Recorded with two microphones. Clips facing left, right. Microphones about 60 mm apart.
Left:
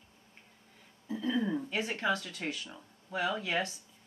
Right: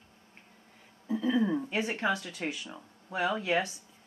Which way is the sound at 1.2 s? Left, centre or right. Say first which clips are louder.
Right 3 dB; centre.